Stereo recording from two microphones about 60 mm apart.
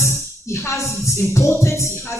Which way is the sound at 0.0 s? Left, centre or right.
Left.